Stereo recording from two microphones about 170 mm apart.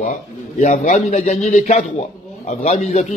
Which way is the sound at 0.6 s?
45° left (ahead or behind).